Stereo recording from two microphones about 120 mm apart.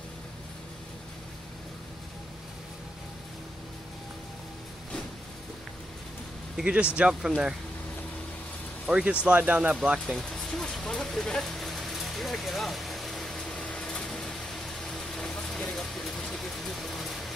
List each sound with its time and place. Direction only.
6.5 s speech: 10° right (ahead or behind)
8.8 s speech: 5° right (ahead or behind)
9.9 s a sound: centre (ahead or behind)